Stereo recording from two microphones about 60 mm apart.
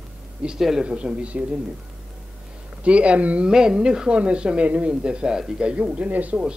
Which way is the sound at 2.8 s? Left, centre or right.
Centre.